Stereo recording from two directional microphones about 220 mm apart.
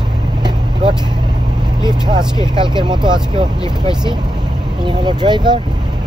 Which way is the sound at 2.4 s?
20° right (ahead or behind).